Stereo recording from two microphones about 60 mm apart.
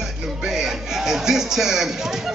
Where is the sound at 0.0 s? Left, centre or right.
Centre.